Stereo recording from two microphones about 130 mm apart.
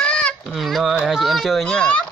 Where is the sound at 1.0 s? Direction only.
Centre (ahead or behind).